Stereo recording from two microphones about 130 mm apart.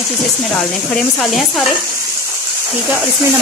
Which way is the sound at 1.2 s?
5° left (ahead or behind).